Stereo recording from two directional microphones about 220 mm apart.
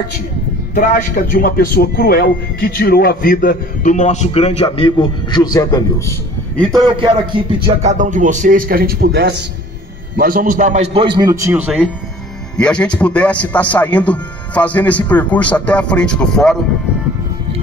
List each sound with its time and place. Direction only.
0.7 s a man's voice: 35° left (ahead or behind); by 6.8 s 5° left (ahead or behind)
7.6 s a man's voice: 30° right (ahead or behind); by 16.5 s 5° left (ahead or behind)